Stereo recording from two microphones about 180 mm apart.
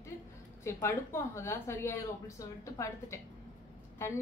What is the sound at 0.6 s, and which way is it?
A woman's voice, 15° left (ahead or behind).